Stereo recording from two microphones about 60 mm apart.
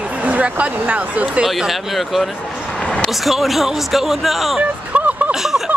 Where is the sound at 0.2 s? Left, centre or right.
Right.